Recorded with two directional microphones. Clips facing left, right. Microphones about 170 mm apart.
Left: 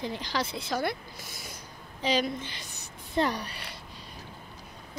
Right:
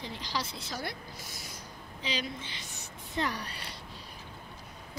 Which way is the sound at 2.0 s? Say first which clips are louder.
Left 9 dB; 45° left (ahead or behind).